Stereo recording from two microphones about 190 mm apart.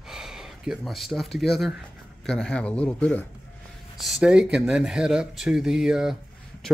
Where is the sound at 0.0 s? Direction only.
Centre (ahead or behind).